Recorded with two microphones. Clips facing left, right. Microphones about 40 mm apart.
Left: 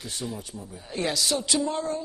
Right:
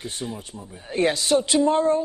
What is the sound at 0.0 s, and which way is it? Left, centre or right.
A man's voice, right.